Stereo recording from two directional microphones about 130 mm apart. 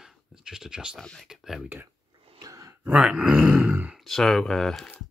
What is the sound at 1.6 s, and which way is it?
Speech, 15° right (ahead or behind).